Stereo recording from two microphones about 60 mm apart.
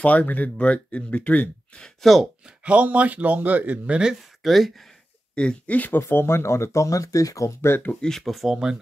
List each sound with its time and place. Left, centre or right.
0.0 s speech: left
2.6 s speech: right
4.1 s speech: centre
5.3 s speech: centre
5.8 s speech: left
7.6 s speech: left
7.9 s speech: centre
8.2 s speech: centre